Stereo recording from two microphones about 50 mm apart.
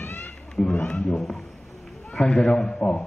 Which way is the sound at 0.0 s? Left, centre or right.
Left.